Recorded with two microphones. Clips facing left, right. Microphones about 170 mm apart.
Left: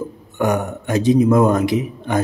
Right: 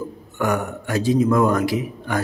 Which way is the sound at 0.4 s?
20° left (ahead or behind).